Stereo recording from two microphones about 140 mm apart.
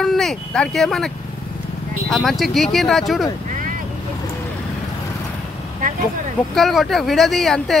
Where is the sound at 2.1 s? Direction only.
Centre (ahead or behind).